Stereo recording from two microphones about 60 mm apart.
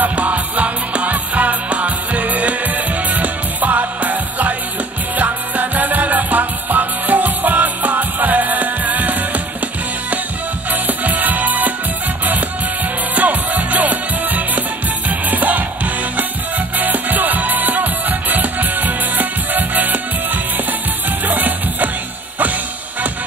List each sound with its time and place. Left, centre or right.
0.0 s music: right
10.7 s music: right
13.1 s music: right
21.3 s music: right